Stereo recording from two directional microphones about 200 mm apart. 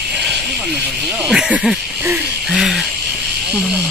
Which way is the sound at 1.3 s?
5° right (ahead or behind).